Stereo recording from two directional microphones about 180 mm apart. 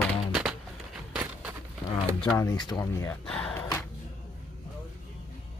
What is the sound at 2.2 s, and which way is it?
Speech, 10° left (ahead or behind).